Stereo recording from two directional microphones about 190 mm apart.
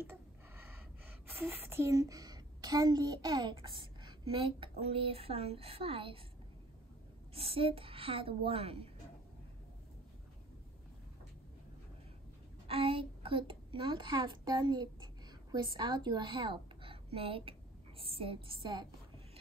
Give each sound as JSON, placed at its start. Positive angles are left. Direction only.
{"t": 0.0, "sound": "gasp", "side_deg": -10}
{"t": 4.3, "sound": "a child's voice", "side_deg": -25}
{"t": 7.3, "sound": "a child's voice", "side_deg": -30}
{"t": 12.6, "sound": "a child's voice", "side_deg": -30}